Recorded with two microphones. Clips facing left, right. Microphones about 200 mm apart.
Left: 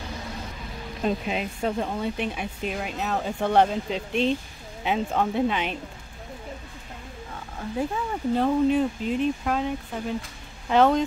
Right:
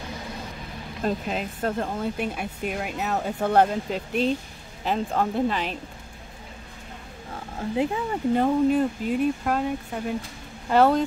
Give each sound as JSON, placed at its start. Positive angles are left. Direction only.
{"t": 1.0, "sound": "speech", "side_deg": 5}
{"t": 7.7, "sound": "speech", "side_deg": -15}
{"t": 8.6, "sound": "speech", "side_deg": -5}
{"t": 10.7, "sound": "speech", "side_deg": -5}